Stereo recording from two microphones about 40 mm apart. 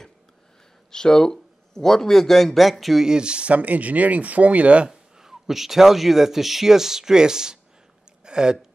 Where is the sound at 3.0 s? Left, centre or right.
Right.